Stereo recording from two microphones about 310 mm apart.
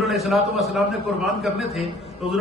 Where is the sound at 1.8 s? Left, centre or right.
Centre.